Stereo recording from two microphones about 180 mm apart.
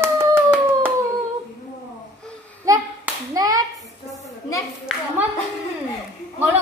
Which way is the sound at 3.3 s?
20° right (ahead or behind).